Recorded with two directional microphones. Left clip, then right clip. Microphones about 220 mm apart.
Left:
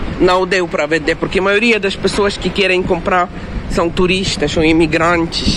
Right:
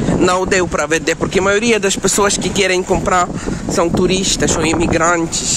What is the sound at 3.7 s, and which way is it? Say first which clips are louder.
Speech: left 1 dB; 10° right (ahead or behind).